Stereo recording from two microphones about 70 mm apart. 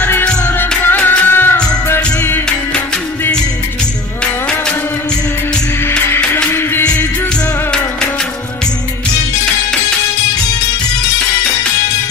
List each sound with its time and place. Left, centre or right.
0.6 s music: left
5.9 s music: left